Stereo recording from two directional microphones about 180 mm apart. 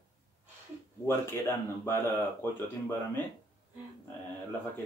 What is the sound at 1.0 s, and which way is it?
Speech, 15° left (ahead or behind).